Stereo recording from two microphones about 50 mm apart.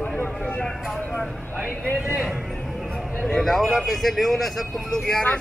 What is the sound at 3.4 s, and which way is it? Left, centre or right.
Speech, centre.